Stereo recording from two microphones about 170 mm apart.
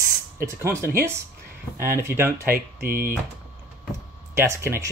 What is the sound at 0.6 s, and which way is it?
Speech, 15° right (ahead or behind).